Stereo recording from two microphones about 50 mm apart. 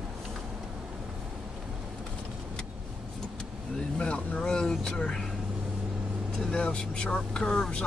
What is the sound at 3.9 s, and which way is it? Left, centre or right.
Vehicle, left.